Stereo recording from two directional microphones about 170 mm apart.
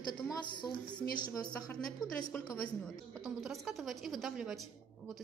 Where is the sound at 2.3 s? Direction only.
10° left (ahead or behind).